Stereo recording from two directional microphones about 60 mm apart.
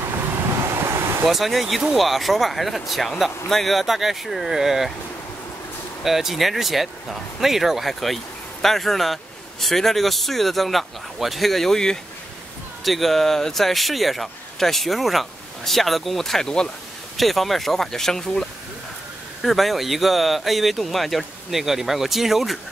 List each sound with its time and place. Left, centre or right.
0.7 s vehicle: right
1.2 s speech: centre
6.0 s speech: centre